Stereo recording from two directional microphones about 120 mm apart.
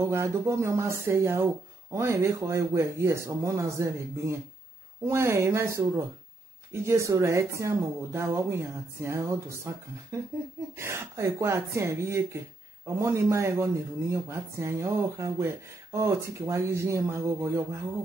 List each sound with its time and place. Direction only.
0.1 s speech: 25° right (ahead or behind)